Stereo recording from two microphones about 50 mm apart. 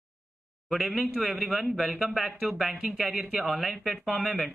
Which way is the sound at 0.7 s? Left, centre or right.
Centre.